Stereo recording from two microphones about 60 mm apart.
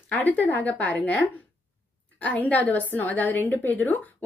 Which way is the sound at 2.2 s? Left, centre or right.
Left.